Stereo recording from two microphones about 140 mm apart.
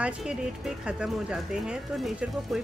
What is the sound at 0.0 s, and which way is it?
Speech, 5° right (ahead or behind).